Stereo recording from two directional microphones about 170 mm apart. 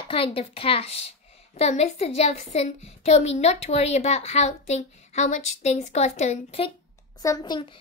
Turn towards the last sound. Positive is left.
turn(degrees=25)  # may be behind; listen again after turning